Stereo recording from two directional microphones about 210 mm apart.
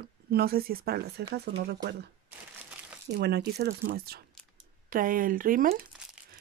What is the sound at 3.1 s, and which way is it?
Speech, 50° right (ahead or behind).